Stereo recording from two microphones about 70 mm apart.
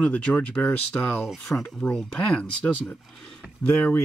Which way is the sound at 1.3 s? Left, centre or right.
Centre.